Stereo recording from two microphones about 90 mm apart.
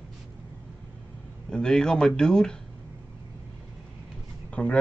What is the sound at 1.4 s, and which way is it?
Speech, 10° left (ahead or behind).